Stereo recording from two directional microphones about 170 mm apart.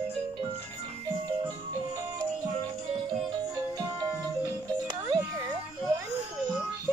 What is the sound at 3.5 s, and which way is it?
Music, 25° right (ahead or behind).